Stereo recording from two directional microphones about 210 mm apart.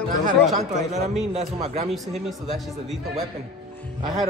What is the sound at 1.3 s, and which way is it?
Speech, 30° right (ahead or behind).